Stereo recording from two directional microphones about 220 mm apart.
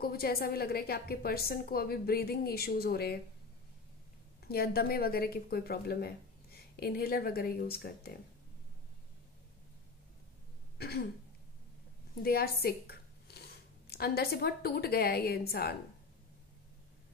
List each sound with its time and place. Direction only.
0.0 s a woman's voice: 45° left (ahead or behind)
4.5 s a woman's voice: 45° left (ahead or behind)
10.8 s throat clearing: 45° left (ahead or behind)
12.2 s speech: 45° left (ahead or behind)